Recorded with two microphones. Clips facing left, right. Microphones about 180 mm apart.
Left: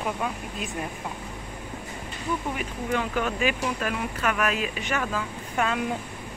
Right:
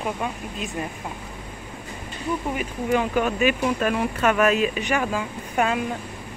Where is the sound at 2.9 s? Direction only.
15° right (ahead or behind).